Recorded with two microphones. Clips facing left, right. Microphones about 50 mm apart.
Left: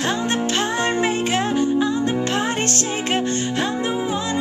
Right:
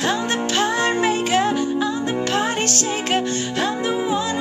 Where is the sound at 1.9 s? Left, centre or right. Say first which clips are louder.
Left 2 dB; centre.